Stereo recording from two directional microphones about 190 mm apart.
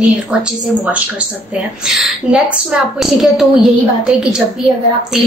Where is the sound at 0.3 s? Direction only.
Centre (ahead or behind).